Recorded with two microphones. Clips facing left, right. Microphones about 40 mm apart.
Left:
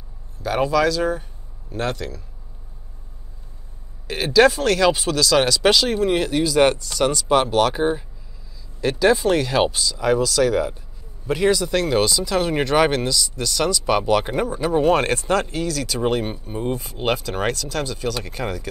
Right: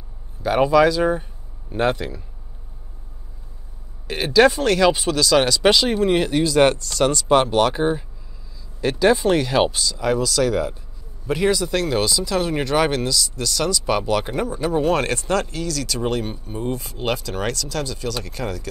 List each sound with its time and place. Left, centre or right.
0.4 s speech: centre
4.1 s speech: centre